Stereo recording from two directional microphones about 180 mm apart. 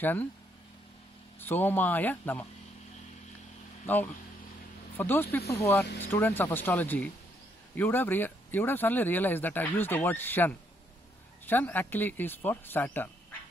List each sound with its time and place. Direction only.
0.0 s speech: 10° left (ahead or behind)
1.4 s speech: 10° left (ahead or behind)
3.8 s speech: 10° left (ahead or behind)